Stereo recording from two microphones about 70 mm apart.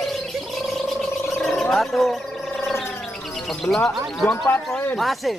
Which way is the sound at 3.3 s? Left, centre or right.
Centre.